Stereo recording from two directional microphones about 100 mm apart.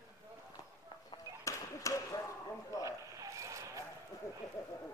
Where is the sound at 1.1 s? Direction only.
30° left (ahead or behind).